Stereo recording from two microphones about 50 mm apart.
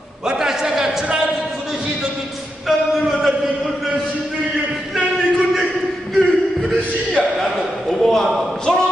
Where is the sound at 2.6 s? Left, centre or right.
Centre.